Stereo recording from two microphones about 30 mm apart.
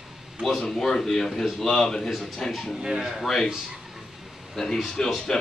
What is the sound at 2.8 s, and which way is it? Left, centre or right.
Speech, right.